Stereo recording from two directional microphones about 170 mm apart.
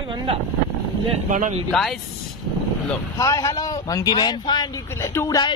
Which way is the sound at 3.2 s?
20° left (ahead or behind).